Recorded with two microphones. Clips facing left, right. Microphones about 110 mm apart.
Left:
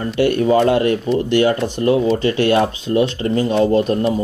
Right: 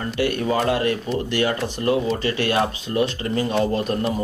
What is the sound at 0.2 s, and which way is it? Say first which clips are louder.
Speech: left 7 dB; 30° left (ahead or behind).